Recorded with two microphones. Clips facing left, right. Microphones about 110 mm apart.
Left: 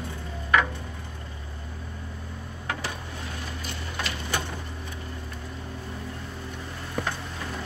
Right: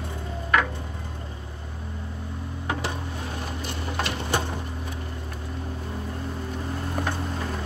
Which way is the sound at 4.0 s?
35° right (ahead or behind).